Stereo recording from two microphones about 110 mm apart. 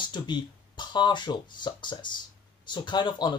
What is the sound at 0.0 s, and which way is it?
Speech, 45° left (ahead or behind).